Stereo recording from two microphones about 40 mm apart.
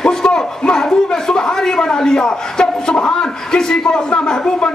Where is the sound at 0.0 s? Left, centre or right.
Left.